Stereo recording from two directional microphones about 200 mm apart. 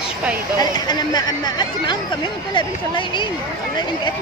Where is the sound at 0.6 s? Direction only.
20° left (ahead or behind).